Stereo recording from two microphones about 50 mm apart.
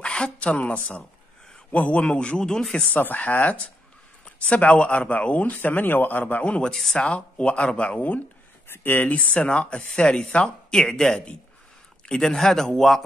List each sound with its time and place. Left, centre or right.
0.0 s speech: left
2.9 s speech: left
6.4 s speech: left
6.7 s speech: centre
7.0 s speech: left
8.6 s speech: left
9.3 s speech: left; by 13.0 s centre